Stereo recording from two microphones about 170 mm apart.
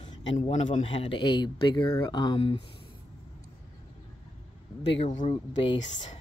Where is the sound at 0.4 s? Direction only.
45° left (ahead or behind).